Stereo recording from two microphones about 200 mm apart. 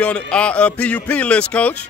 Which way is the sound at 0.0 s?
5° left (ahead or behind).